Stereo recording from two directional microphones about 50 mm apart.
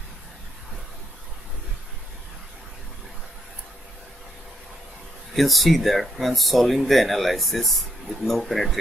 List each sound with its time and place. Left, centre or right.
5.3 s speech: centre